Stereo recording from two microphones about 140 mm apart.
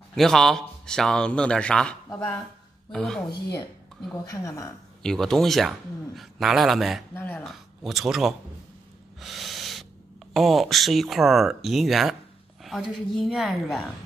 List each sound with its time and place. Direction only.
0.1 s speech: 5° left (ahead or behind)
4.2 s a woman's voice: 25° left (ahead or behind)
5.0 s speech: 5° left (ahead or behind)
7.2 s speech: 15° left (ahead or behind)
7.4 s speech: centre (ahead or behind)
9.2 s owl: centre (ahead or behind)
10.3 s speech: centre (ahead or behind)